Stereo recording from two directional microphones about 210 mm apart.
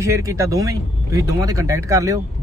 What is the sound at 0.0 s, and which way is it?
A man's voice, 15° right (ahead or behind).